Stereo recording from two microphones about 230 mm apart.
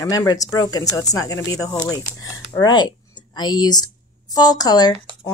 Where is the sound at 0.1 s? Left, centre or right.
Centre.